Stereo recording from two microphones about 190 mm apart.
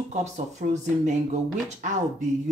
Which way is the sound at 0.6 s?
40° right (ahead or behind).